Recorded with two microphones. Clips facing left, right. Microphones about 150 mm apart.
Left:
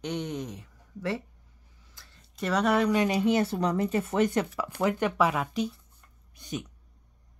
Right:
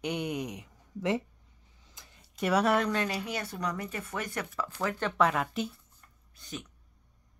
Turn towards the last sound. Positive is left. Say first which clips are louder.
# left 6 dB
turn(degrees=20)  # may be behind; listen again after turning